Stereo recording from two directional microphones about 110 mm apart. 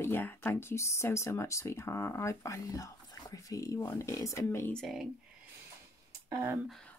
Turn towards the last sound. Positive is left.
turn(degrees=-30)  # may be behind; listen again after turning